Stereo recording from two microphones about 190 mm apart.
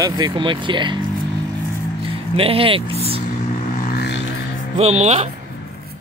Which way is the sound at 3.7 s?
50° left (ahead or behind).